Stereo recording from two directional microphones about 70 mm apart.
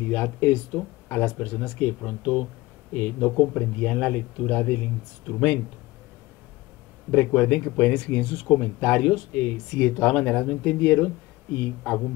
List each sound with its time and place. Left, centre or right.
0.1 s speech: left
7.1 s speech: left